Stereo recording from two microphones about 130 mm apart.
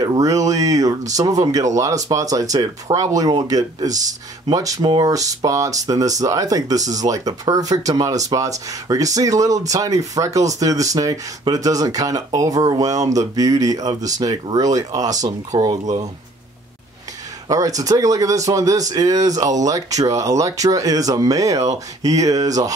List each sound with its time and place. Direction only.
0.0 s speech: 30° right (ahead or behind)
15.1 s speech: 65° right (ahead or behind)
15.6 s speech: 30° right (ahead or behind)
17.5 s speech: 25° right (ahead or behind)